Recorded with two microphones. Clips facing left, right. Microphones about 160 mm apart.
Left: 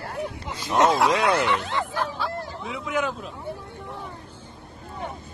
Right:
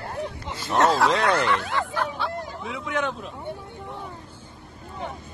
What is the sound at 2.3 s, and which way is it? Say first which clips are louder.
Hubbub: even; 15° right (ahead or behind).